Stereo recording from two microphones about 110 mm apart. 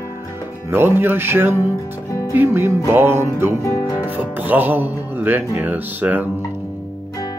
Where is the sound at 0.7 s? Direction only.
20° right (ahead or behind).